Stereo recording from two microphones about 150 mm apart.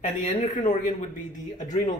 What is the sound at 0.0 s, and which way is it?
Speech, 55° left (ahead or behind).